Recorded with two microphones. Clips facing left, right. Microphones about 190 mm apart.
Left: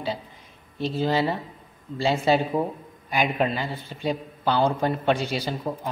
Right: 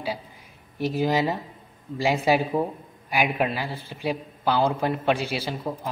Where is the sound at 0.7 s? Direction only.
15° right (ahead or behind).